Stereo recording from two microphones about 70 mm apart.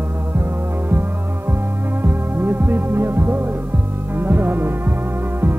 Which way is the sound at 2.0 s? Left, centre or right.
Right.